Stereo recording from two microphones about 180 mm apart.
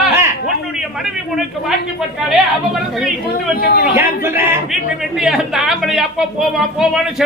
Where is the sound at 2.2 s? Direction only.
Centre (ahead or behind).